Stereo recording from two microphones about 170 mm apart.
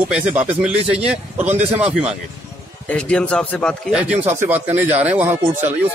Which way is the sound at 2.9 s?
5° left (ahead or behind).